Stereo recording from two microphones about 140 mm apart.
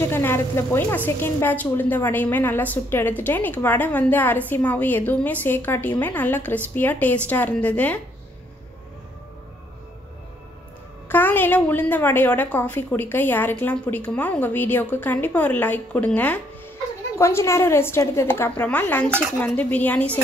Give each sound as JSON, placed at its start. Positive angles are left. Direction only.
{"t": 0.1, "sound": "a woman's voice", "side_deg": 15}
{"t": 11.1, "sound": "a woman's voice", "side_deg": 15}